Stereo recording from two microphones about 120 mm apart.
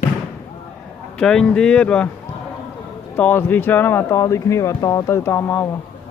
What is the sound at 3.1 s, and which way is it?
Speech, 15° left (ahead or behind).